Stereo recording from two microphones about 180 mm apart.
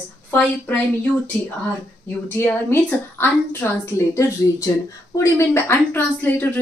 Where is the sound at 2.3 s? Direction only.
15° left (ahead or behind).